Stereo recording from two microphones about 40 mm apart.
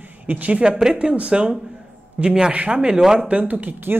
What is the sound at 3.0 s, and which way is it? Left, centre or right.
Speech, centre.